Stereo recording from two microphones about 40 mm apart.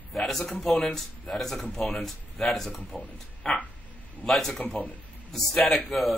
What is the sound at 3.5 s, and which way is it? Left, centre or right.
Speech, centre.